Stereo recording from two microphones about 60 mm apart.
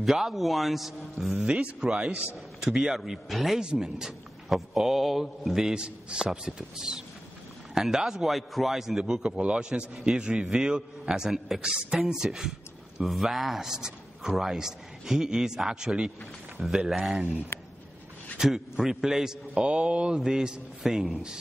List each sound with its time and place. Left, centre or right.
0.0 s a man's voice: centre
17.5 s a sound: left
18.4 s a man's voice: centre